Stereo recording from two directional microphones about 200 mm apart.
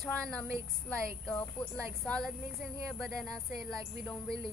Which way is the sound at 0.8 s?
5° left (ahead or behind).